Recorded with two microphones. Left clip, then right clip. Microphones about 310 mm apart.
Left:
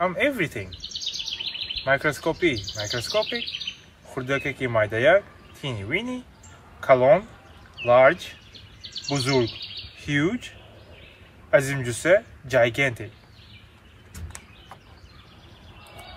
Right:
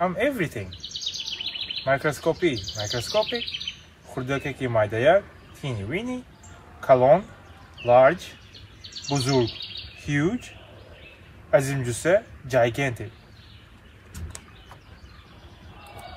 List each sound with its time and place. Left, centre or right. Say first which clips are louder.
0.0 s a man's voice: left 1 dB; centre
0.7 s bird vocalization: even; centre
1.9 s a man's voice: even; centre
3.0 s a man's voice: right 1 dB; centre
4.1 s a man's voice: left 2 dB; centre
11.5 s a man's voice: left 1 dB; centre